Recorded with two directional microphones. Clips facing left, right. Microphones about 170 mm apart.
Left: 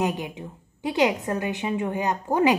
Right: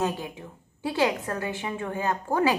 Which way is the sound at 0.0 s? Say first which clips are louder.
Left 2 dB; 15° left (ahead or behind).